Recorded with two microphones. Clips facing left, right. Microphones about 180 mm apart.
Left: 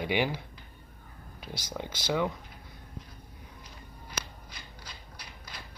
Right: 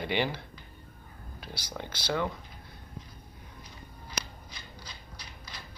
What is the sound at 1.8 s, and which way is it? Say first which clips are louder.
Speech: left 2 dB; 15° left (ahead or behind).